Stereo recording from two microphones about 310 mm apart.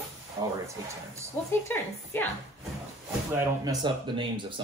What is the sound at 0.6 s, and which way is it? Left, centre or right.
Speech, centre.